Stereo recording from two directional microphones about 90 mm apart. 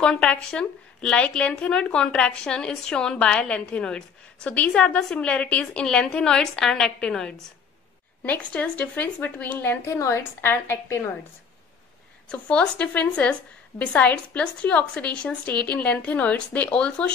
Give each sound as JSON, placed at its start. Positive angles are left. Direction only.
{"t": 0.0, "sound": "speech", "side_deg": 10}
{"t": 9.8, "sound": "a woman's voice", "side_deg": 35}
{"t": 12.3, "sound": "speech", "side_deg": 10}